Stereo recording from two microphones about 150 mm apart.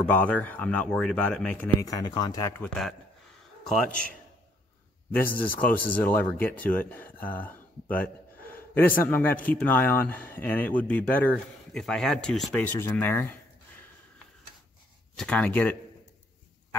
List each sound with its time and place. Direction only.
0.0 s speech: 10° left (ahead or behind)
2.6 s speech: 5° left (ahead or behind)
5.6 s speech: 10° left (ahead or behind)
12.5 s speech: 15° left (ahead or behind)
15.1 s speech: 5° left (ahead or behind)